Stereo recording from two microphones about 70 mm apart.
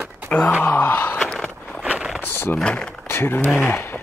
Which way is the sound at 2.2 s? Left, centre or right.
Left.